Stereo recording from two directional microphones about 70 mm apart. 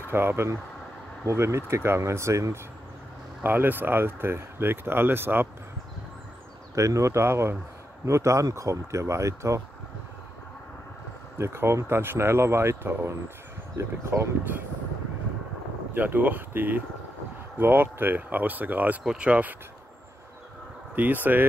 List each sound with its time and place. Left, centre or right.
0.0 s speech: right
3.4 s speech: right
6.7 s speech: right
11.3 s speech: right
15.9 s speech: right
20.9 s speech: right